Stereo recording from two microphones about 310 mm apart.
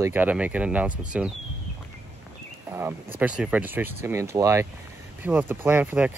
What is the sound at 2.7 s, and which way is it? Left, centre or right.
Speech, centre.